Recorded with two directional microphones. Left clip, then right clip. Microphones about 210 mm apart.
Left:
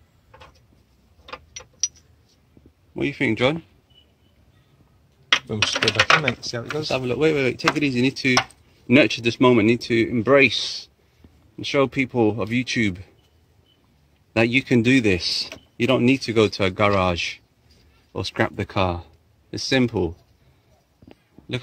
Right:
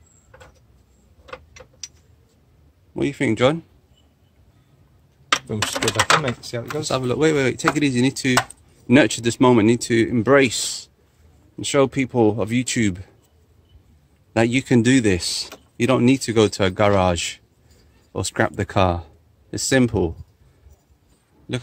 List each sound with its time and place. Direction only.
3.0 s speech: 10° right (ahead or behind)
6.2 s speech: centre (ahead or behind)
6.9 s speech: 20° right (ahead or behind)
14.3 s speech: 10° right (ahead or behind)